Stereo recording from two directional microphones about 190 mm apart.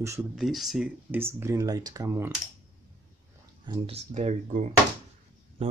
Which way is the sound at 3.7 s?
30° right (ahead or behind).